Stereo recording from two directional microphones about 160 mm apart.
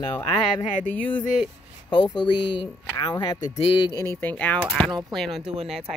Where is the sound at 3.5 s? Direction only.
40° left (ahead or behind).